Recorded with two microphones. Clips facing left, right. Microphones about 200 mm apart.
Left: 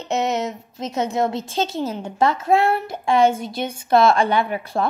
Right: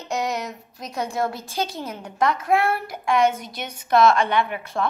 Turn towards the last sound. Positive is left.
turn(degrees=35)  # may be behind; listen again after turning